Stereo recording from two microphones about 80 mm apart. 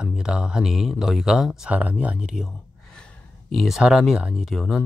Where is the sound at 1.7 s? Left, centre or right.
Centre.